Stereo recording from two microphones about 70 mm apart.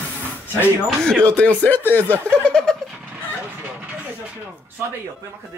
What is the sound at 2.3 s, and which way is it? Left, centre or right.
Snicker, centre.